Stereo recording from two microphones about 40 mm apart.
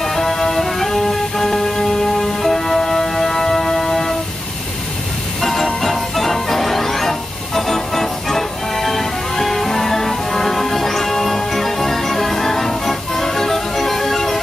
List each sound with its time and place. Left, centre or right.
0.0 s music: centre
5.4 s music: centre